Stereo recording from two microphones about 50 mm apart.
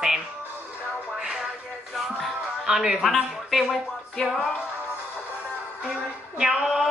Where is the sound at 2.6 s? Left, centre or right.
Centre.